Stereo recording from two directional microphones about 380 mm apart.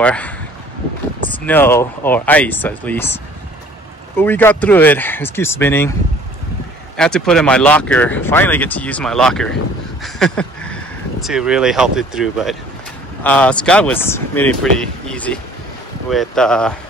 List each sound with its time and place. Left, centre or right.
0.0 s speech: centre
1.3 s speech: centre
4.2 s speech: centre
7.0 s speech: centre